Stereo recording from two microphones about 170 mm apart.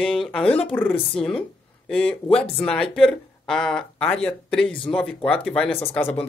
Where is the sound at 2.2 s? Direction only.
35° left (ahead or behind).